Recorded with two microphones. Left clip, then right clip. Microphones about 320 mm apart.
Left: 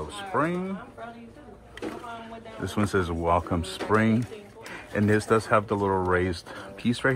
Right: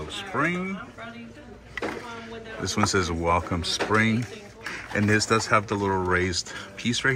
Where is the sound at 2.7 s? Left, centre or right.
Centre.